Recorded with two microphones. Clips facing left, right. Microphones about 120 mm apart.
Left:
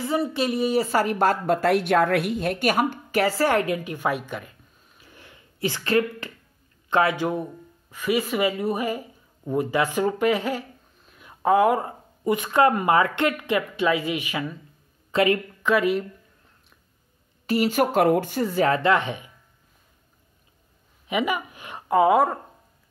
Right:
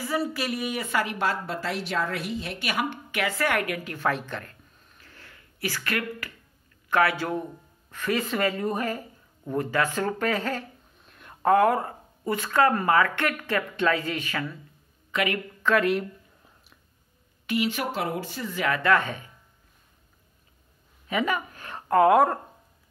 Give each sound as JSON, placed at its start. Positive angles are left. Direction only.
{"t": 0.0, "sound": "a woman's voice", "side_deg": 25}
{"t": 15.0, "sound": "speech", "side_deg": 30}
{"t": 15.8, "sound": "speech", "side_deg": 0}
{"t": 17.5, "sound": "a woman's voice", "side_deg": 40}
{"t": 18.9, "sound": "a woman's voice", "side_deg": 20}
{"t": 21.1, "sound": "a woman's voice", "side_deg": 15}